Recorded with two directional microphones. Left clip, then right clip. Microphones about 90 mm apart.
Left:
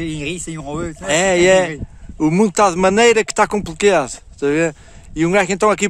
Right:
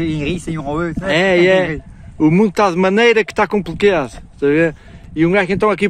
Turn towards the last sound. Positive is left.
turn(degrees=45)  # may be behind; listen again after turning